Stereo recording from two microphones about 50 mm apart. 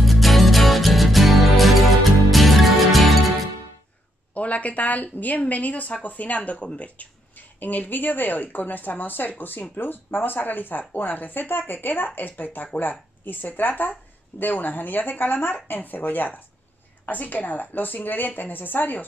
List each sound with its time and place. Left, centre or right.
0.0 s music: centre
4.3 s speech: left